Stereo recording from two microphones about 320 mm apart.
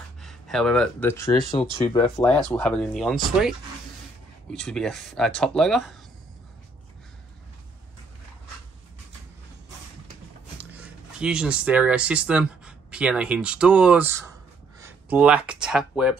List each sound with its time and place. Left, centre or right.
0.2 s speech: centre
2.5 s speech: centre
10.7 s speech: centre